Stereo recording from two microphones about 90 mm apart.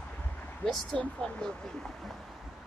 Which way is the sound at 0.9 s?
5° left (ahead or behind).